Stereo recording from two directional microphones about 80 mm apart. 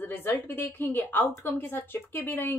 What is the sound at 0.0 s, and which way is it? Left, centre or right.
A woman's voice, left.